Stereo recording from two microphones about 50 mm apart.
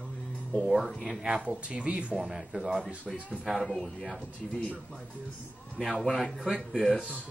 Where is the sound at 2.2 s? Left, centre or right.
Centre.